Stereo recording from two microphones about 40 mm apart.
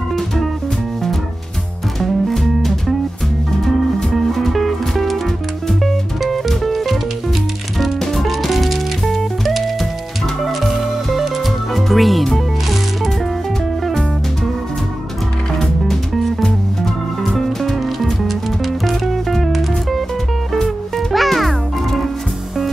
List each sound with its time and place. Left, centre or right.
2.0 s music: centre
4.1 s music: centre
6.2 s music: centre
8.0 s music: centre
15.6 s music: centre
21.1 s music: centre